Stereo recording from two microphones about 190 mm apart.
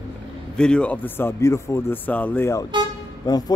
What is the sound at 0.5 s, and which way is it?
Speech, 5° left (ahead or behind).